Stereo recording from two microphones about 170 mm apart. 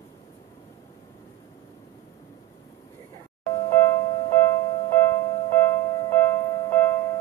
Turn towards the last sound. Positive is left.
turn(degrees=15)  # may be behind; listen again after turning